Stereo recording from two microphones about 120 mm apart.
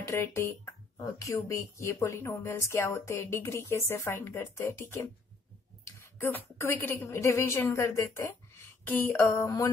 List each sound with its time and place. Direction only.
0.1 s a woman's voice: 20° left (ahead or behind)